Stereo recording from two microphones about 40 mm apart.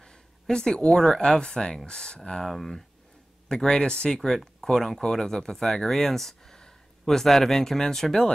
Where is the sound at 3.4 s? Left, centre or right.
Centre.